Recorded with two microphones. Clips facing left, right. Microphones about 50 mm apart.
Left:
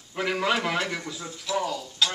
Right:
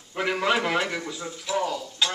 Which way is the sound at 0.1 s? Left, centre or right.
Centre.